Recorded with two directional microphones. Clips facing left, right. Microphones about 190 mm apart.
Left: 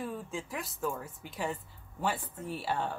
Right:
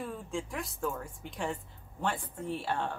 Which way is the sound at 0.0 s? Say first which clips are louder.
Right 1 dB; centre (ahead or behind).